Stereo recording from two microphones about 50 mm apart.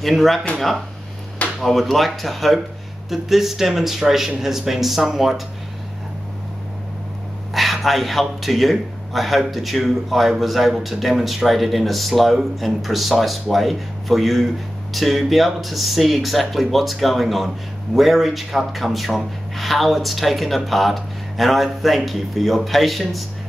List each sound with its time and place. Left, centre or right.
0.0 s a man's voice: centre
7.5 s a man's voice: centre